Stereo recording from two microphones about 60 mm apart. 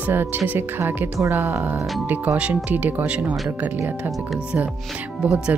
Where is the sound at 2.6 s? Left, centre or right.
Right.